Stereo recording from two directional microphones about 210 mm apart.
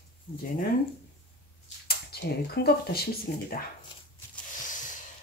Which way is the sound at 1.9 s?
50° left (ahead or behind).